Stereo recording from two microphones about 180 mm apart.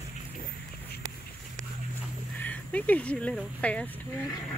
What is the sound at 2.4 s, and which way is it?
Speech, 10° left (ahead or behind).